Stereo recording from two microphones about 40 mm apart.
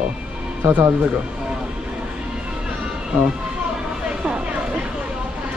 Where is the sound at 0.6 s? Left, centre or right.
Right.